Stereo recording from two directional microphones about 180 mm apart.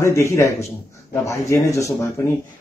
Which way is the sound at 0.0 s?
15° left (ahead or behind).